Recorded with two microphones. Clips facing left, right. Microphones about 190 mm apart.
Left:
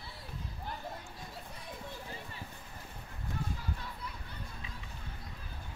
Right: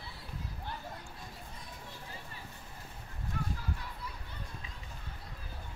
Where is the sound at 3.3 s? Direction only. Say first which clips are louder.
Right 1 dB; 30° left (ahead or behind).